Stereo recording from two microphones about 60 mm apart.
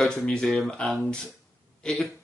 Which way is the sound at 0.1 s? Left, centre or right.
Centre.